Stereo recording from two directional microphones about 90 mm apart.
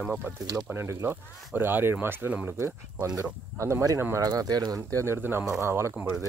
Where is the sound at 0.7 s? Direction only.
30° right (ahead or behind).